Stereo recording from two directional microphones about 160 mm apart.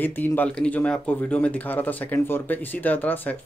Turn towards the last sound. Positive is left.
turn(degrees=10)  # may be behind; listen again after turning